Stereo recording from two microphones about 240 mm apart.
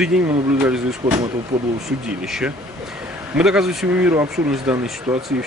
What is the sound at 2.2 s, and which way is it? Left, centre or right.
Speech, centre.